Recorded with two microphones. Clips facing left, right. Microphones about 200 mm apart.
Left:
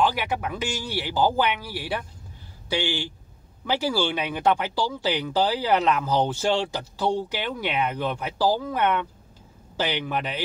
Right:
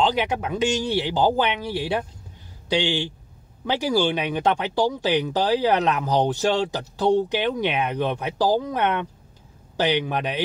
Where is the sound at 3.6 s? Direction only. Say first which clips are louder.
Right 3 dB; 15° right (ahead or behind).